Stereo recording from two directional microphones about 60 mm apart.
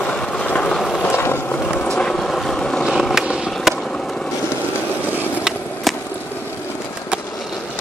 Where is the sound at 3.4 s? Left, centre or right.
Centre.